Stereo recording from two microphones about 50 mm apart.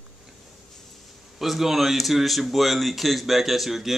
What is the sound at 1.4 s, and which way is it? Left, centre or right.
A man's voice, centre.